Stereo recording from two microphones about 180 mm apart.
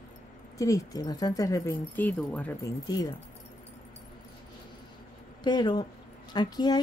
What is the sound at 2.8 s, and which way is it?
Speech, 20° left (ahead or behind).